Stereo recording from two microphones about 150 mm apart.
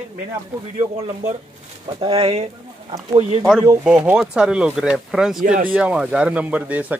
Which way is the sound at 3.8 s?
5° right (ahead or behind).